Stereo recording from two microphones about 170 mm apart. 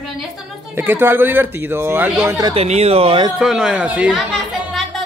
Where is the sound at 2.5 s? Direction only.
40° right (ahead or behind).